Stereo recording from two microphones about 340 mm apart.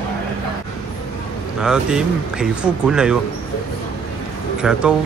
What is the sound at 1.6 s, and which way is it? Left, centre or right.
Speech, centre.